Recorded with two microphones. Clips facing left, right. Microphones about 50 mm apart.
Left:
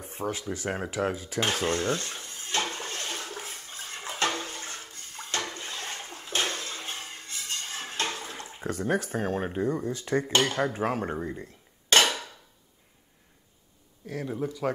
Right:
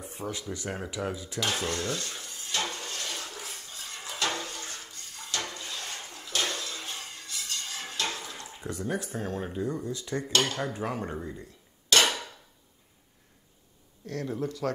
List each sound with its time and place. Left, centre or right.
0.0 s dishes: left
4.4 s toilet flush: left
10.1 s dishes: left
11.4 s a sound: left
14.0 s speech: centre